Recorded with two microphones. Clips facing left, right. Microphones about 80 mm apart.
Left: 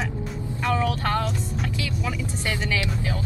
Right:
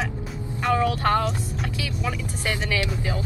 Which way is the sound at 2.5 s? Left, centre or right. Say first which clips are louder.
Right 1 dB; centre.